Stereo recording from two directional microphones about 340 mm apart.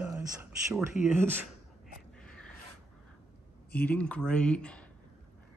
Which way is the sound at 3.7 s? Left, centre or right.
Centre.